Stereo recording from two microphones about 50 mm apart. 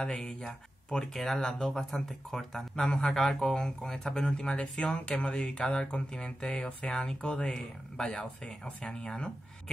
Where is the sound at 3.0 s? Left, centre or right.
Centre.